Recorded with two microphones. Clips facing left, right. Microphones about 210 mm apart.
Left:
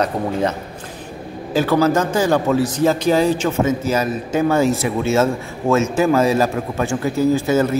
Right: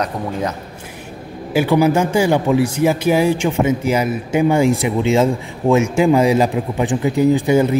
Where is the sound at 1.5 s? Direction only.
15° right (ahead or behind).